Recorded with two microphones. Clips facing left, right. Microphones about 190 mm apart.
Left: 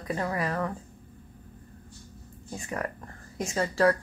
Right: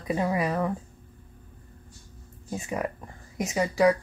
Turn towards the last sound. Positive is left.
turn(degrees=-15)  # may be behind; listen again after turning